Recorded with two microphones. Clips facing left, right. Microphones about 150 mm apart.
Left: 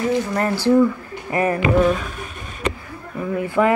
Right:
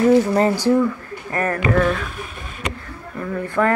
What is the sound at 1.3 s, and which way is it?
Speech, 15° left (ahead or behind).